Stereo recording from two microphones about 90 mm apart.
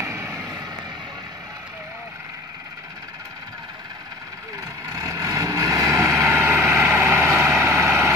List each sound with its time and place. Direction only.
0.0 s vehicle: 30° right (ahead or behind)
4.8 s vehicle: 40° right (ahead or behind)